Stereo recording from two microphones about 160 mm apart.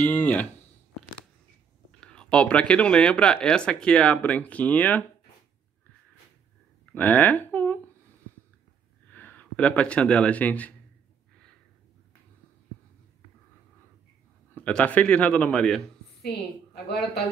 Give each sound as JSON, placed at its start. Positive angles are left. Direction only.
{"t": 0.0, "sound": "speech", "side_deg": 10}
{"t": 1.9, "sound": "speech", "side_deg": 5}
{"t": 6.9, "sound": "speech", "side_deg": 10}
{"t": 9.1, "sound": "speech", "side_deg": 10}
{"t": 14.5, "sound": "speech", "side_deg": 10}
{"t": 16.2, "sound": "a woman's voice", "side_deg": 85}